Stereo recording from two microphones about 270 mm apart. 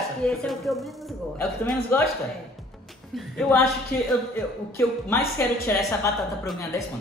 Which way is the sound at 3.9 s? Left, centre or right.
Left.